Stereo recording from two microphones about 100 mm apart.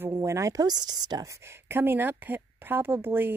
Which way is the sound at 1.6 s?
20° right (ahead or behind).